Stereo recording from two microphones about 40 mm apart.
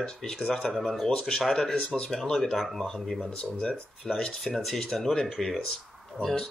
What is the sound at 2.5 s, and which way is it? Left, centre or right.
Speech, centre.